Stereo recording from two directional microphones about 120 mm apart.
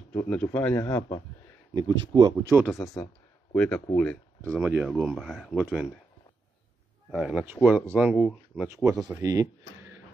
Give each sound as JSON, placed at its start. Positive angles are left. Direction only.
{"t": 0.1, "sound": "a man's voice", "side_deg": 15}
{"t": 1.8, "sound": "speech", "side_deg": -35}
{"t": 2.7, "sound": "speech", "side_deg": 25}
{"t": 3.5, "sound": "a man's voice", "side_deg": 10}
{"t": 4.6, "sound": "speech", "side_deg": -5}
{"t": 7.1, "sound": "speech", "side_deg": -5}
{"t": 7.6, "sound": "speech", "side_deg": -15}
{"t": 8.6, "sound": "speech", "side_deg": -25}